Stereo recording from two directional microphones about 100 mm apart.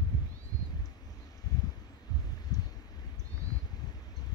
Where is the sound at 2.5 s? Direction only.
40° left (ahead or behind).